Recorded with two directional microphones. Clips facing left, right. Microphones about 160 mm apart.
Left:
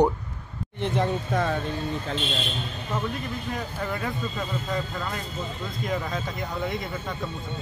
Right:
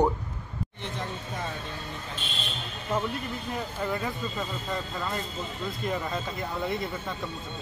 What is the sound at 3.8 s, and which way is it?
A man's voice, centre (ahead or behind).